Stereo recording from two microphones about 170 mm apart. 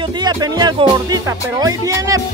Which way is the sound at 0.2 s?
25° right (ahead or behind).